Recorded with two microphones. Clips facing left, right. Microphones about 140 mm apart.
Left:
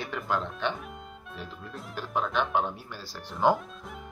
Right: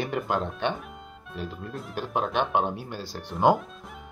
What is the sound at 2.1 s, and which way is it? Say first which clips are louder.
Speech: right 2 dB; 20° right (ahead or behind).